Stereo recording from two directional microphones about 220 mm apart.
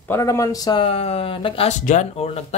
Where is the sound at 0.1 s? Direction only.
15° left (ahead or behind).